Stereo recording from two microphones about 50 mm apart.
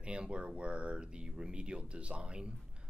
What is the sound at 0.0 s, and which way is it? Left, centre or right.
Speech, right.